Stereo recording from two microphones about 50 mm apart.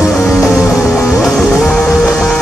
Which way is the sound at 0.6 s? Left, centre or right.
Centre.